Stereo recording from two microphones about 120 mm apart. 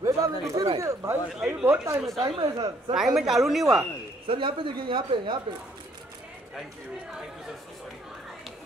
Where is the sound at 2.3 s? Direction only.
35° right (ahead or behind).